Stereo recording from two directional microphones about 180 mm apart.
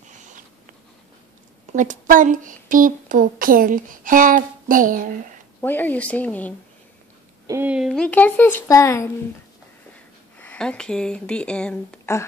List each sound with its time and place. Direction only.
1.7 s speech: 45° right (ahead or behind)
5.6 s speech: 10° left (ahead or behind)
7.4 s speech: 10° right (ahead or behind); by 9.1 s 15° left (ahead or behind)
10.4 s speech: 10° left (ahead or behind)